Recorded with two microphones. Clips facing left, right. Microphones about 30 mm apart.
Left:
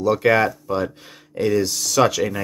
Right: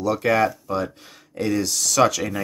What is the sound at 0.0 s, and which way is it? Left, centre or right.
Speech, centre.